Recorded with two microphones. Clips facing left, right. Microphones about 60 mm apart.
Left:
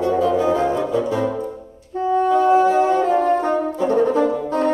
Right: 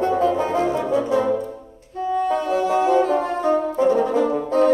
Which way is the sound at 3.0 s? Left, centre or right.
Left.